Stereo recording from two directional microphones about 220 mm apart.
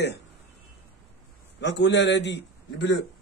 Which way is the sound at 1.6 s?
55° left (ahead or behind).